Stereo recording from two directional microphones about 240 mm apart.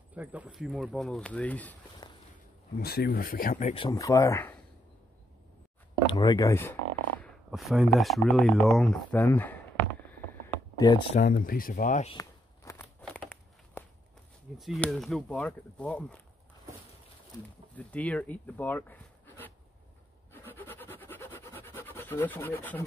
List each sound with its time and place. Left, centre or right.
0.1 s speech: centre
2.8 s speech: left; by 4.6 s centre
6.0 s speech: centre
11.1 s speech: left
12.2 s walk: centre
13.0 s a sound: centre
14.6 s speech: centre
17.7 s speech: centre
20.4 s a sound: centre